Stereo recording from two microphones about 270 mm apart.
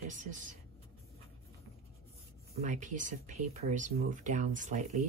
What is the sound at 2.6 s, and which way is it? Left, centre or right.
Speech, right.